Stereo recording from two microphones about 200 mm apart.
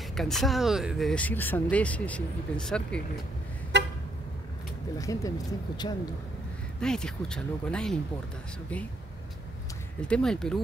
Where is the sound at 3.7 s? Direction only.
60° right (ahead or behind).